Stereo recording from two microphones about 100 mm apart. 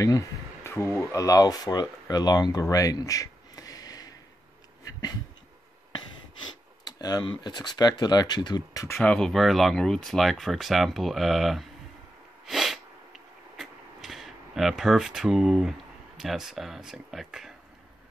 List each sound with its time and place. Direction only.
0.7 s speech: 25° left (ahead or behind)
6.8 s speech: 40° left (ahead or behind)
8.9 s speech: 10° left (ahead or behind)
12.4 s sniff: centre (ahead or behind)
16.2 s speech: 5° right (ahead or behind)